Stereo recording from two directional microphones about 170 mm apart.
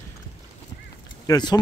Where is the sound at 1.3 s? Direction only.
25° left (ahead or behind).